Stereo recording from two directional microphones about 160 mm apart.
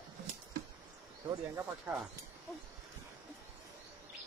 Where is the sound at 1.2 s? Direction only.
15° right (ahead or behind).